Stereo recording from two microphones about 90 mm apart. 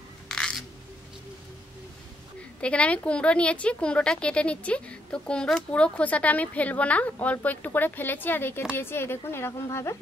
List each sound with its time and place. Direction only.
2.6 s a woman's voice: 15° left (ahead or behind); by 9.9 s 30° left (ahead or behind)